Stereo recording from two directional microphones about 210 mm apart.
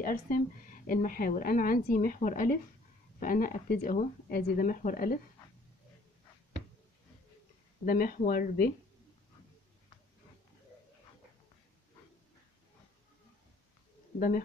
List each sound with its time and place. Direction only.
0.0 s a woman's voice: 40° left (ahead or behind)
7.8 s speech: 45° left (ahead or behind)